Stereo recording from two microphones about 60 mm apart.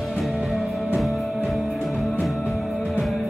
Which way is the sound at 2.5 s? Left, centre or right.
Centre.